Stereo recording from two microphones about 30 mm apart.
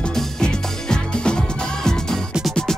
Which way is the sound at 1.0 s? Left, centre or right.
Left.